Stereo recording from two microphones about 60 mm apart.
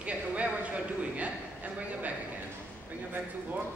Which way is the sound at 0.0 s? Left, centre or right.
Right.